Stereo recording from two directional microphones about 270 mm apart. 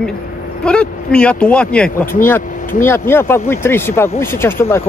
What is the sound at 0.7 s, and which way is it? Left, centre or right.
Speech, centre.